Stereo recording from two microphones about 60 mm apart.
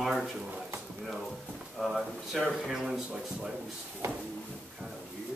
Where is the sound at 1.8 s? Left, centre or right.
Centre.